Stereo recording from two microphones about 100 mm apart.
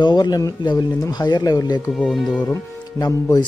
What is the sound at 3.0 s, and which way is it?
Speech, 45° left (ahead or behind).